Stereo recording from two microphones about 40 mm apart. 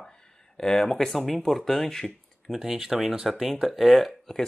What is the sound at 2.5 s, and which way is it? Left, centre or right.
Speech, centre.